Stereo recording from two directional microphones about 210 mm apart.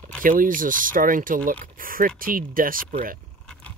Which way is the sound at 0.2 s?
40° right (ahead or behind).